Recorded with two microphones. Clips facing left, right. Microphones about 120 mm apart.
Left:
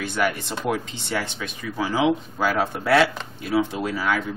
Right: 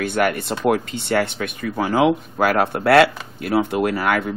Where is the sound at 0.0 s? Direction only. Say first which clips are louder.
Right 4 dB; 55° right (ahead or behind).